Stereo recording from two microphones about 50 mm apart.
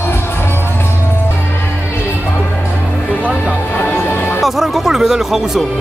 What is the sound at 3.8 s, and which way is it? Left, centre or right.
Music, left.